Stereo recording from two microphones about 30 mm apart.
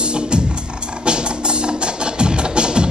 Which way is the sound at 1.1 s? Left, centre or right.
Right.